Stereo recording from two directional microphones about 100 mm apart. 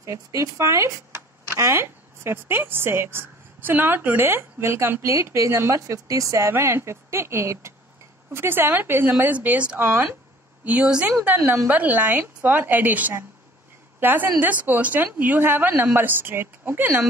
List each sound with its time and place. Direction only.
0.0 s a woman's voice: 30° right (ahead or behind); by 11.1 s 10° right (ahead or behind)
11.2 s a woman's voice: 20° right (ahead or behind)